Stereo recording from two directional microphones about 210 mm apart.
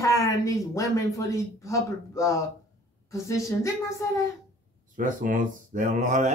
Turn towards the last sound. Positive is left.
turn(degrees=-35)  # may be behind; listen again after turning